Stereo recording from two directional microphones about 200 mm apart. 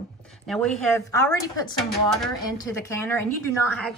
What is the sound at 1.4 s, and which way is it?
Speech, 15° left (ahead or behind).